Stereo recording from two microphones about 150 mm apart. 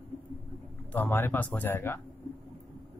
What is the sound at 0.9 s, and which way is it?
Speech, 15° left (ahead or behind).